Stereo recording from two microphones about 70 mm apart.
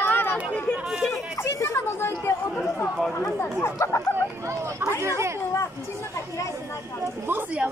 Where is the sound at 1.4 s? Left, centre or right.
Left.